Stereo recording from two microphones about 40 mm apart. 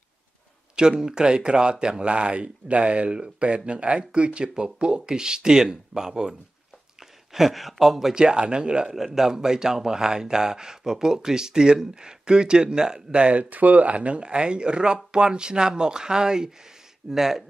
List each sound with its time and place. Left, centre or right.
0.7 s a man's voice: centre
8.1 s a man's voice: right
8.9 s a man's voice: centre